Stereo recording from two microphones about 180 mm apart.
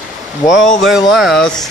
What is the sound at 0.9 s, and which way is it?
Speech, centre (ahead or behind).